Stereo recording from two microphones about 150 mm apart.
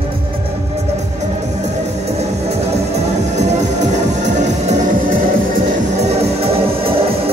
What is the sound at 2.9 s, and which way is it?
Music, 50° right (ahead or behind).